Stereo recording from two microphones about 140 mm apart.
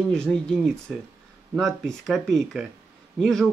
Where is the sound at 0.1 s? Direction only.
5° left (ahead or behind).